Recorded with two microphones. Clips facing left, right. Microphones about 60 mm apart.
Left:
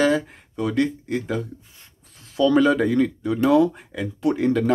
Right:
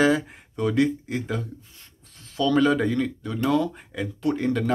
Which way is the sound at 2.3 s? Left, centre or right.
Centre.